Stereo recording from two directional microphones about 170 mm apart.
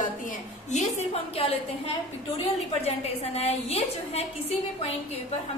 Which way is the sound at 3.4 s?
40° left (ahead or behind).